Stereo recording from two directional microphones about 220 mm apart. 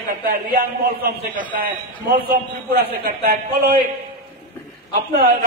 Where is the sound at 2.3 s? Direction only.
40° right (ahead or behind).